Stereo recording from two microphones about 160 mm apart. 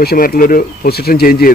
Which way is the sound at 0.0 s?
70° left (ahead or behind).